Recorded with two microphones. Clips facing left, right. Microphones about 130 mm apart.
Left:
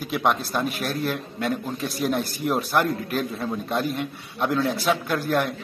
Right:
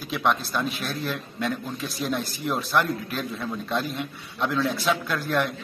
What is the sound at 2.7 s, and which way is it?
Speech, 45° left (ahead or behind).